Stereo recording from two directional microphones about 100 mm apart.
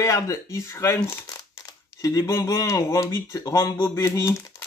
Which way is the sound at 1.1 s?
40° left (ahead or behind).